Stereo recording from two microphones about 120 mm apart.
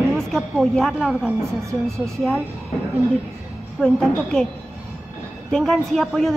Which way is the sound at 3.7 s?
5° left (ahead or behind).